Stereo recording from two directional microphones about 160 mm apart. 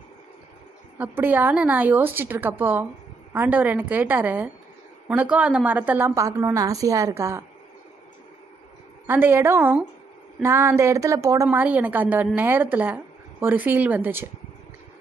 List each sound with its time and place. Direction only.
0.9 s a woman's voice: 10° right (ahead or behind)
9.0 s a woman's voice: 15° right (ahead or behind)
11.4 s a woman's voice: 10° right (ahead or behind)